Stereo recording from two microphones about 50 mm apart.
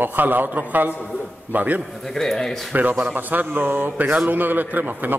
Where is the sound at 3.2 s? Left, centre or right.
Right.